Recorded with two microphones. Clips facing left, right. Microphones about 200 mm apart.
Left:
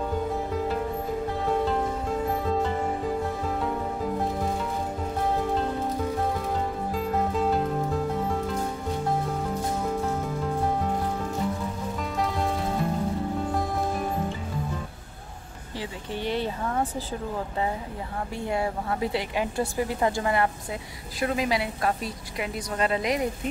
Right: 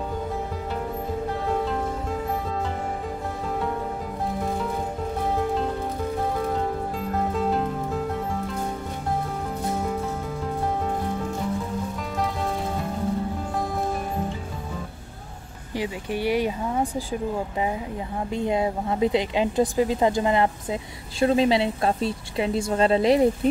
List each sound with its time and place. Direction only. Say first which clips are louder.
15.8 s speech: right 5 dB; 10° right (ahead or behind)
18.3 s a woman's voice: right 5 dB; 20° right (ahead or behind)